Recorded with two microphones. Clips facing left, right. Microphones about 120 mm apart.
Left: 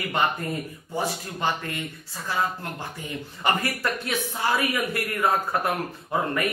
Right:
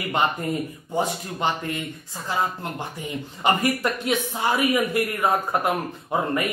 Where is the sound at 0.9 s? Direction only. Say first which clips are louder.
Right 3 dB; 20° right (ahead or behind).